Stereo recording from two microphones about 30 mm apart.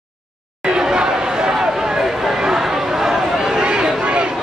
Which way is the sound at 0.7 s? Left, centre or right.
Right.